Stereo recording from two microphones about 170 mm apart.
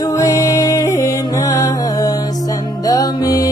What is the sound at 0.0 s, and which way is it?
Music, 20° left (ahead or behind).